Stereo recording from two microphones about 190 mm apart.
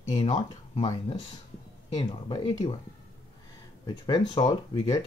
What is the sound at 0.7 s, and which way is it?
Speech, 25° left (ahead or behind).